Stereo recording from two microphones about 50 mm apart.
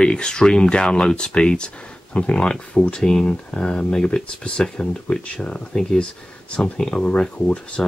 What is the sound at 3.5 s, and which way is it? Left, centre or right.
Speech, left.